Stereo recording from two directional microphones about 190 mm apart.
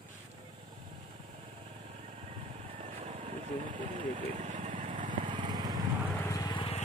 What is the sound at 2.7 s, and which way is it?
Vehicle, 35° right (ahead or behind).